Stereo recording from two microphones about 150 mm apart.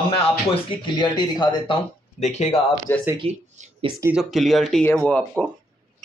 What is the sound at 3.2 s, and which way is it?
Speech, 40° right (ahead or behind).